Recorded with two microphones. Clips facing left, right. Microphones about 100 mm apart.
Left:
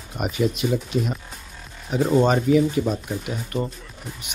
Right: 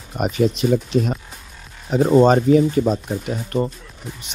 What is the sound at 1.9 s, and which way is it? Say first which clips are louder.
Speech: right 5 dB; 35° right (ahead or behind).